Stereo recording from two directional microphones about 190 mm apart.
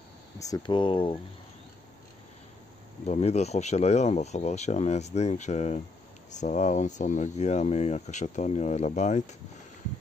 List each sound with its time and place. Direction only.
0.4 s speech: 20° left (ahead or behind)
3.1 s speech: 35° left (ahead or behind)